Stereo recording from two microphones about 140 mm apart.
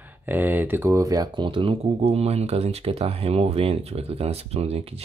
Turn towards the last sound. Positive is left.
turn(degrees=-45)  # may be behind; listen again after turning